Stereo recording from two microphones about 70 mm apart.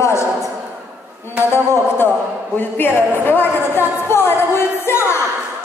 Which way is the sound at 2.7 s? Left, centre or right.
Left.